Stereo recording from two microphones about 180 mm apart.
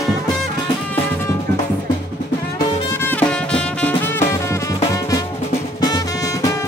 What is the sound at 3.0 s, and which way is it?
Music, 10° left (ahead or behind).